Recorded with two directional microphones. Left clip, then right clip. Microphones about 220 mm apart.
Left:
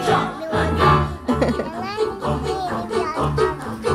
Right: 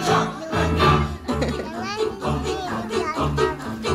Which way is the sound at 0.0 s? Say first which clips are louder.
Left 1 dB; 50° right (ahead or behind).